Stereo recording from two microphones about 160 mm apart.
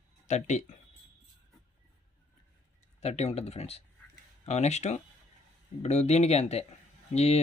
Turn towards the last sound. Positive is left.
turn(degrees=40)  # may be behind; listen again after turning